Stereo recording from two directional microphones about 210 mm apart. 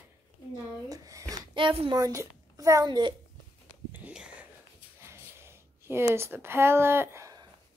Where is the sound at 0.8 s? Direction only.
15° right (ahead or behind).